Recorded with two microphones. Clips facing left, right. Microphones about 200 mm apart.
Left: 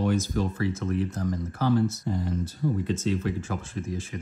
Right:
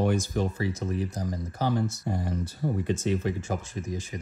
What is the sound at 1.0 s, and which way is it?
Speech, 15° right (ahead or behind).